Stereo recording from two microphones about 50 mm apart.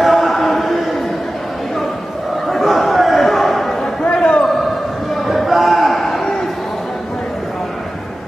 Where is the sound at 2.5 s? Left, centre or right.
Centre.